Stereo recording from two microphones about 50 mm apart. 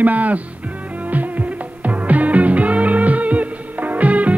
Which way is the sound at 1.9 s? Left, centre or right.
Right.